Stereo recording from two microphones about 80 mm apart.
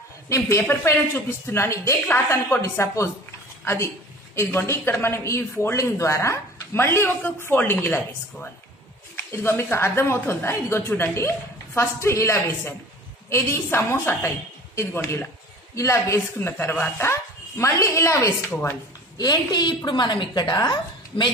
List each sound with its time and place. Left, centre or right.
0.3 s a woman's voice: left
9.1 s a woman's voice: left
16.3 s a woman's voice: left
19.1 s a woman's voice: left
19.8 s a woman's voice: left